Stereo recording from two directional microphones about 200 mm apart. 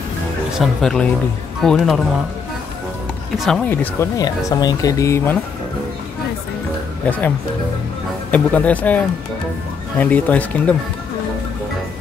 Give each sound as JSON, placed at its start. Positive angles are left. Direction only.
{"t": 0.6, "sound": "speech", "side_deg": 5}
{"t": 3.3, "sound": "speech", "side_deg": 0}
{"t": 7.1, "sound": "speech", "side_deg": 10}